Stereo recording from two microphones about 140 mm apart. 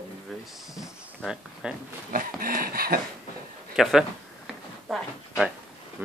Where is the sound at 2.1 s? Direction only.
90° right.